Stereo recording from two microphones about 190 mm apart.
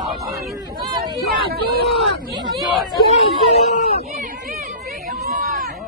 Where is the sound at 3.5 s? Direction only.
35° left (ahead or behind).